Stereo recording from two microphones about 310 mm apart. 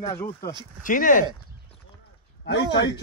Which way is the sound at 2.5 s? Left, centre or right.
Left.